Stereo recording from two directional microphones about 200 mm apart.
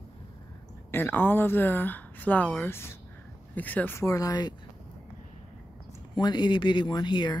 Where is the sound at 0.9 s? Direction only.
10° left (ahead or behind).